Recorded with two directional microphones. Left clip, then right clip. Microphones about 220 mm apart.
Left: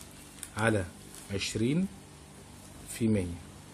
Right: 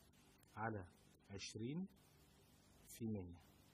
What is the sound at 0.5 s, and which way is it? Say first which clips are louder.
Speech: left 19 dB; 15° right (ahead or behind).